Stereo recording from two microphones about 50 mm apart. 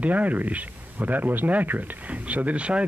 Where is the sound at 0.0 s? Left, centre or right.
Right.